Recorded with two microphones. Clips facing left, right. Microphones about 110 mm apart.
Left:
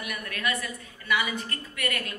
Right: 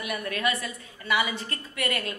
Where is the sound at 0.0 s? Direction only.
25° right (ahead or behind).